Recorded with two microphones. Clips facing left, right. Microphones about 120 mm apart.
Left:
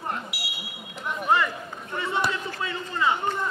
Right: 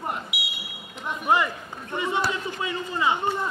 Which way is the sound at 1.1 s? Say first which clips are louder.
Right 1 dB; 15° right (ahead or behind).